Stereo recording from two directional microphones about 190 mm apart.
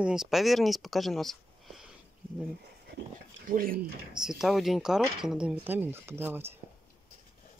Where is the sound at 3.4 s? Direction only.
50° right (ahead or behind).